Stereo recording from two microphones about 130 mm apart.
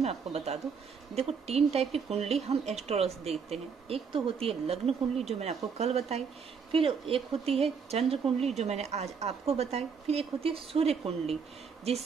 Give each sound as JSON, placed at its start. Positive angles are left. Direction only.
{"t": 0.0, "sound": "speech", "side_deg": -55}